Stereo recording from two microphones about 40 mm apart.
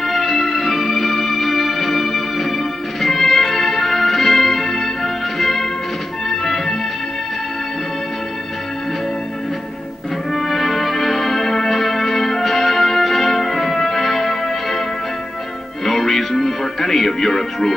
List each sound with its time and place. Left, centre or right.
0.0 s music: centre
10.3 s music: centre
15.8 s music: centre